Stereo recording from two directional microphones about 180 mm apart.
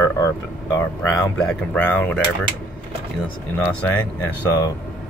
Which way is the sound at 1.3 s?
5° left (ahead or behind).